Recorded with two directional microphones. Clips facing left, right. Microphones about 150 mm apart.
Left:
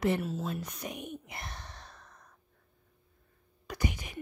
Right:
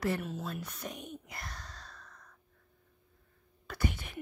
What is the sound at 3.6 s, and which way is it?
Whispering, 15° left (ahead or behind).